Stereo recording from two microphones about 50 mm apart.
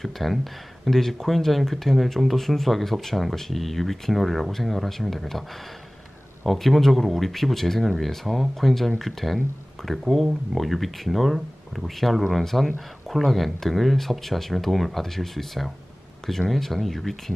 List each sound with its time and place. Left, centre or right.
0.0 s speech: centre